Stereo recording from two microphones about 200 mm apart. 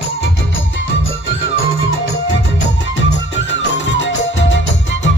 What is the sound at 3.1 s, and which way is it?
Music, 65° left (ahead or behind).